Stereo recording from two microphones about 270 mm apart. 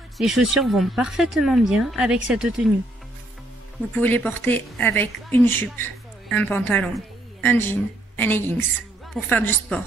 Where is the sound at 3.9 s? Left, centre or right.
Centre.